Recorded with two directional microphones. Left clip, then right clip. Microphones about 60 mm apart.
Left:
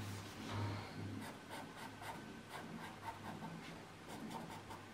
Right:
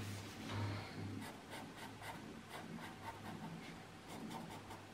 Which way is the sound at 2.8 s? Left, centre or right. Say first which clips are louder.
Left 1 dB; centre.